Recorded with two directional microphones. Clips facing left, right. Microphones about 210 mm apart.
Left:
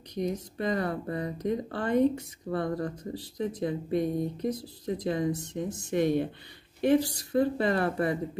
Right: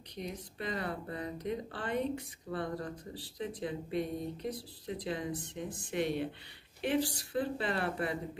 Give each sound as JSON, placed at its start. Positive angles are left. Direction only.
{"t": 0.1, "sound": "speech", "side_deg": 45}